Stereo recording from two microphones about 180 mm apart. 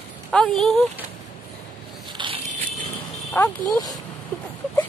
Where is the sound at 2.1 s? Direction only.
30° right (ahead or behind).